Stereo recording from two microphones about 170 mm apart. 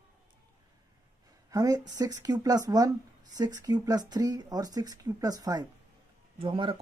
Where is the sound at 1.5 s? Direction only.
20° right (ahead or behind).